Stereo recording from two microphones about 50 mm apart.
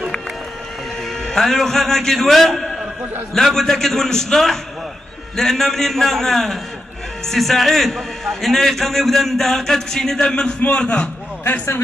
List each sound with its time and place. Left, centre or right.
1.2 s a man's voice: centre
10.2 s a man's voice: left